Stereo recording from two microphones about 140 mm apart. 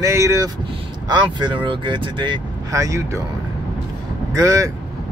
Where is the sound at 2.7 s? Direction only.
25° right (ahead or behind).